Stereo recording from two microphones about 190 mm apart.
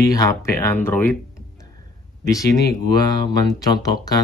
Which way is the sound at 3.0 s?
20° left (ahead or behind).